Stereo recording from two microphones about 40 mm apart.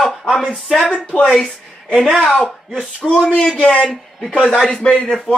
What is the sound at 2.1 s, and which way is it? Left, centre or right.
Speech, centre.